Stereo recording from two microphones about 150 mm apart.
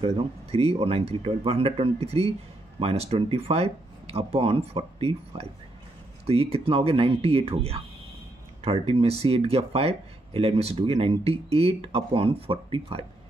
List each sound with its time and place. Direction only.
0.0 s speech: 40° right (ahead or behind)